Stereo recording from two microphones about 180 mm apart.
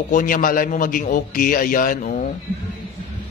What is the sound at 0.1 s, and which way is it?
A man's voice, 50° left (ahead or behind).